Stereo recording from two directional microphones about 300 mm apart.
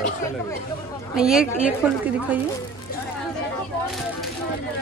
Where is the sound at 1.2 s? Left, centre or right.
Centre.